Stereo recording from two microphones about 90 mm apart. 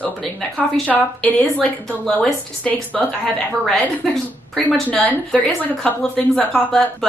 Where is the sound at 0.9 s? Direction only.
15° left (ahead or behind).